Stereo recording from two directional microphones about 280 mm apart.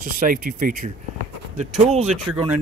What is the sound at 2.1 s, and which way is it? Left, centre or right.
Speech, centre.